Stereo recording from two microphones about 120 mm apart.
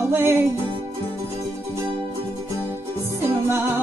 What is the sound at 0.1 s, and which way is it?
Music, 20° right (ahead or behind).